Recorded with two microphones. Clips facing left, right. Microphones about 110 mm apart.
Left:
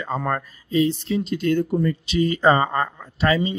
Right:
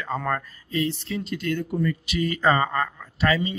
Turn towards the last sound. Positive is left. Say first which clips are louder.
# left 3 dB
turn(degrees=25)  # may be behind; listen again after turning